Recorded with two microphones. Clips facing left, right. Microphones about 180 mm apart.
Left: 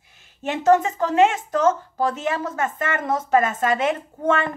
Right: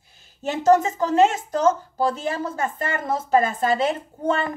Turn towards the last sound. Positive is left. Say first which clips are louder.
# left 2 dB
turn(degrees=-35)  # may be behind; listen again after turning